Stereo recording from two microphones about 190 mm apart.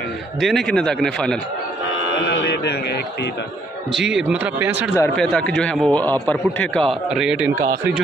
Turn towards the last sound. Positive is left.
turn(degrees=-5)  # may be behind; listen again after turning